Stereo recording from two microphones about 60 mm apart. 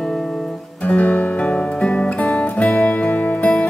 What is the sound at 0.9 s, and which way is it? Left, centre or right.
Music, left.